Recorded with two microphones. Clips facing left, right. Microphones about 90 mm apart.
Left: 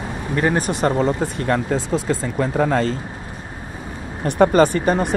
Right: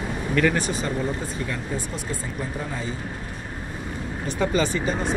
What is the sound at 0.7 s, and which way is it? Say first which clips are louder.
Speech: left 8 dB; 70° left (ahead or behind).